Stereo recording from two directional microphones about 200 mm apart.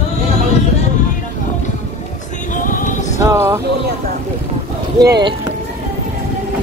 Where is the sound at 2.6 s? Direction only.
40° left (ahead or behind).